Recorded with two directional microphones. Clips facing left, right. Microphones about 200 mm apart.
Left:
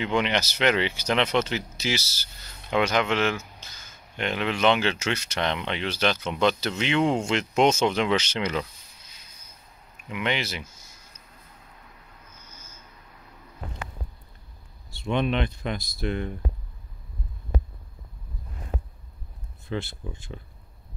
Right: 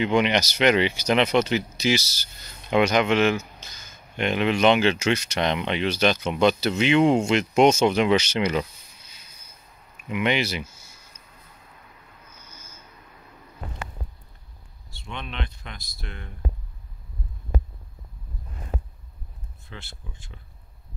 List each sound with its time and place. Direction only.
0.0 s speech: 15° right (ahead or behind)
10.1 s speech: 15° right (ahead or behind)
15.0 s speech: 5° left (ahead or behind)